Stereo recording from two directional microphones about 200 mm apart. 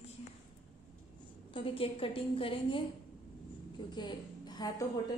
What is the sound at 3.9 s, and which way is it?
Speech, 20° left (ahead or behind).